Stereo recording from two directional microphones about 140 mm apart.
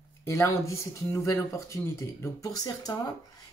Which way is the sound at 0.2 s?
20° left (ahead or behind).